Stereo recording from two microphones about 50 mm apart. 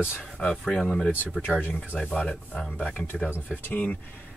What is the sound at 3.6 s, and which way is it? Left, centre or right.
Speech, left.